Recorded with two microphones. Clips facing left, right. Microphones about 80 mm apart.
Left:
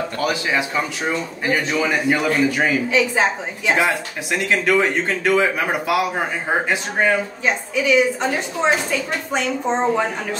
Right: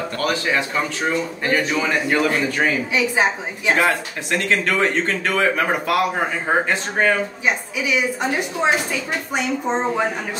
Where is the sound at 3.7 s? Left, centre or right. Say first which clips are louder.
Right 1 dB; centre.